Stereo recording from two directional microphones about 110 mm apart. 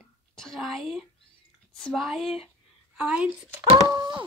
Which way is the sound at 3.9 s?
40° right (ahead or behind).